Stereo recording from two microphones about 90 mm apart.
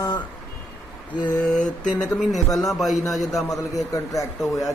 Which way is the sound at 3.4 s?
40° left (ahead or behind).